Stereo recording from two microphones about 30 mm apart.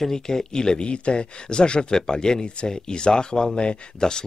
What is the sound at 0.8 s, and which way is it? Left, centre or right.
Speech, left.